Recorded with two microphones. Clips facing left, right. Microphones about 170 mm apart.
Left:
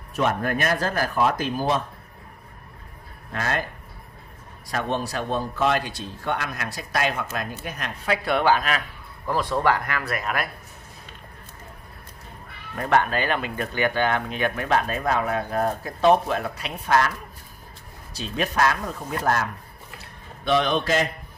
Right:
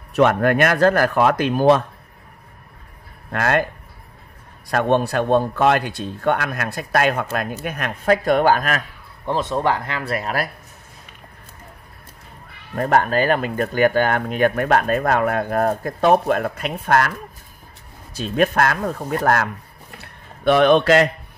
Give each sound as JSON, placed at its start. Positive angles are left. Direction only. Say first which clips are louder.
{"t": 0.1, "sound": "speech", "louder": "right 8 dB", "side_deg": -75}
{"t": 3.3, "sound": "speech", "louder": "right 8 dB", "side_deg": -65}
{"t": 4.6, "sound": "speech", "louder": "right 8 dB", "side_deg": -60}
{"t": 9.2, "sound": "speech", "louder": "right 2 dB", "side_deg": -25}
{"t": 12.7, "sound": "speech", "louder": "right 4 dB", "side_deg": -40}
{"t": 18.1, "sound": "speech", "louder": "right 7 dB", "side_deg": -50}
{"t": 20.0, "sound": "a sound", "louder": "right 3 dB", "side_deg": -60}